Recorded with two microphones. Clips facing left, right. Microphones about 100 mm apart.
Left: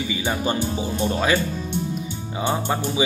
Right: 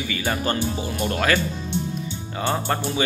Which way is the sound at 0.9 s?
5° right (ahead or behind).